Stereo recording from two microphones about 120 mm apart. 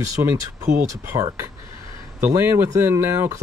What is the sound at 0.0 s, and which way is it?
Speech, 25° right (ahead or behind).